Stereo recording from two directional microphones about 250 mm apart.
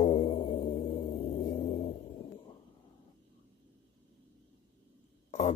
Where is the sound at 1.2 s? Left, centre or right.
Left.